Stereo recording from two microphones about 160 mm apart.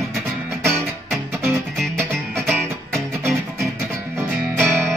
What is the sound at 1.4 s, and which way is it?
Music, centre (ahead or behind).